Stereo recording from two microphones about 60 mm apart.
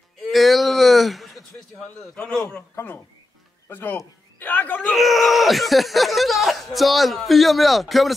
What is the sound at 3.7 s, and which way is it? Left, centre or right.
A man's voice, left.